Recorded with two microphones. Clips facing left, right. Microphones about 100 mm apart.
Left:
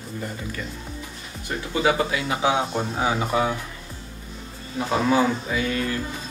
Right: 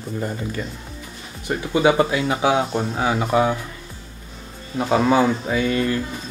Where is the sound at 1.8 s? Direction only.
30° right (ahead or behind).